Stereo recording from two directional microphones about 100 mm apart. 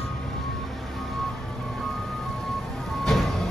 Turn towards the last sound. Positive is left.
turn(degrees=0)  # may be behind; listen again after turning